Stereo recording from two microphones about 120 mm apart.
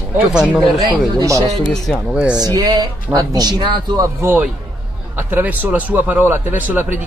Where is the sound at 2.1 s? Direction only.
10° right (ahead or behind).